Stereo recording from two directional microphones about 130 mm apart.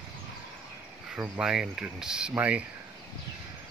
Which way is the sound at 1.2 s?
5° right (ahead or behind).